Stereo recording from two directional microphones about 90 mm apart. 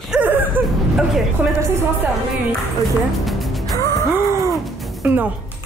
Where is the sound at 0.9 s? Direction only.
5° right (ahead or behind).